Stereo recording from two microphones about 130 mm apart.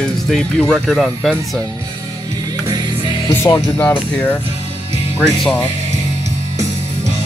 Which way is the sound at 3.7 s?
15° left (ahead or behind).